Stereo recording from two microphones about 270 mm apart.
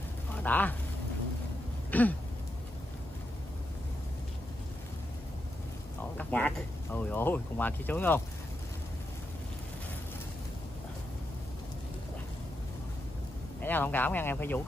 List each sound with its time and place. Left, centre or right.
0.3 s speech: centre
1.9 s throat clearing: centre
6.1 s speech: centre
13.6 s speech: centre